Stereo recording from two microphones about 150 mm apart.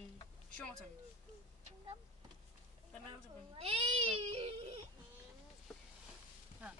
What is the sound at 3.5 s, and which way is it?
Baby cry, 40° right (ahead or behind).